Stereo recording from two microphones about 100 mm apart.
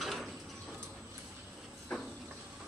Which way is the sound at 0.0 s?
Centre (ahead or behind).